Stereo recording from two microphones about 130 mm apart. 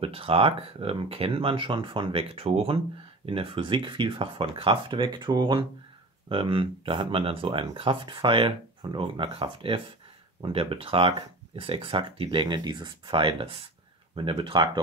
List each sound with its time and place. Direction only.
0.0 s speech: 45° right (ahead or behind)